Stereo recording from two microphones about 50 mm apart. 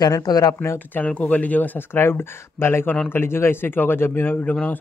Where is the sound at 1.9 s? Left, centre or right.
Left.